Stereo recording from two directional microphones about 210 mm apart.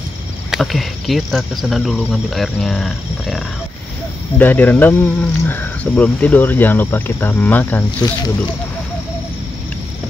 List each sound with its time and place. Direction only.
0.5 s speech: centre (ahead or behind)
8.0 s speech: 20° left (ahead or behind)